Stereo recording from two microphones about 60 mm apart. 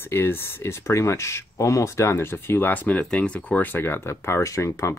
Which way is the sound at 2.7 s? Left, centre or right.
Left.